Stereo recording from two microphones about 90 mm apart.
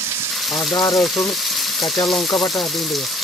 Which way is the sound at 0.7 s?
40° left (ahead or behind).